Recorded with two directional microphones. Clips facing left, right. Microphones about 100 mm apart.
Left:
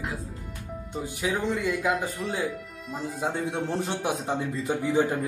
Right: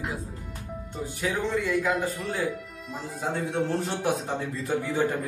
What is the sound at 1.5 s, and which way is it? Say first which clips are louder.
Speech: right 2 dB; 15° left (ahead or behind).